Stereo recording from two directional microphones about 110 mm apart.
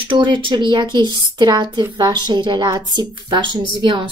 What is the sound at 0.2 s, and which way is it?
A woman's voice, 45° right (ahead or behind).